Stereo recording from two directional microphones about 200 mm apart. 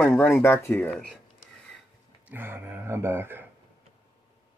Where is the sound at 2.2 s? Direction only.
10° right (ahead or behind).